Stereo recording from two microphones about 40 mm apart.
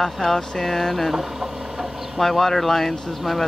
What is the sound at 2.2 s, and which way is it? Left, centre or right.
Speech, centre.